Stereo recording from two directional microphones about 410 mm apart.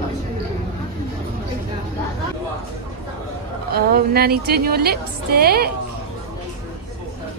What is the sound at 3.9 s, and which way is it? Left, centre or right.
A woman's voice, right.